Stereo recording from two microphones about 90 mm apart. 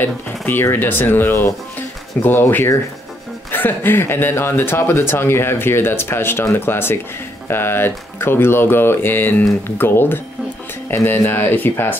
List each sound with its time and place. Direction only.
0.0 s speech: 25° left (ahead or behind)